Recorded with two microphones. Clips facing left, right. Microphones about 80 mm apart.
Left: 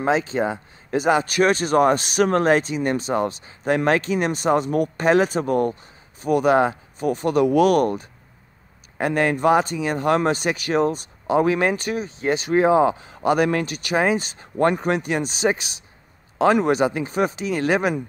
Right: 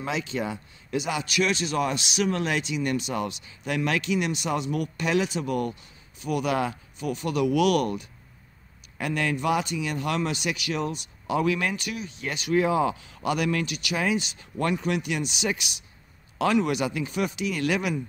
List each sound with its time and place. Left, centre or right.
0.0 s speech: left